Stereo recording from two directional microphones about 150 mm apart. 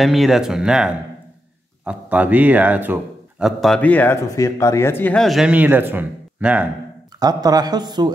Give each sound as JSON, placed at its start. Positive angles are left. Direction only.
{"t": 0.0, "sound": "a man's voice", "side_deg": 0}
{"t": 7.2, "sound": "speech", "side_deg": -25}